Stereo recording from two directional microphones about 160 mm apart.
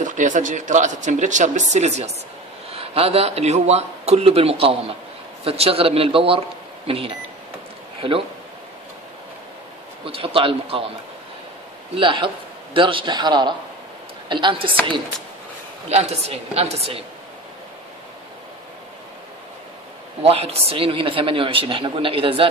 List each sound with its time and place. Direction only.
0.0 s a woman's voice: 50° right (ahead or behind); by 7.2 s 35° right (ahead or behind)
10.0 s a woman's voice: 35° right (ahead or behind)
12.0 s a woman's voice: 30° right (ahead or behind)
15.9 s a woman's voice: 40° right (ahead or behind)
20.2 s a woman's voice: 40° right (ahead or behind)